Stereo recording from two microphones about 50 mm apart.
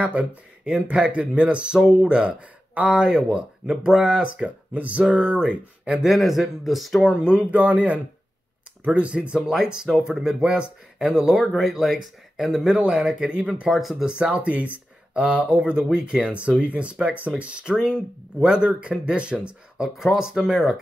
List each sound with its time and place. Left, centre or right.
0.0 s speech: right
4.7 s speech: right
5.0 s speech: centre
6.0 s speech: centre
7.2 s speech: right
9.5 s speech: centre
12.8 s speech: centre
13.7 s speech: centre
14.0 s speech: centre
16.3 s speech: right
17.8 s speech: centre
20.0 s speech: centre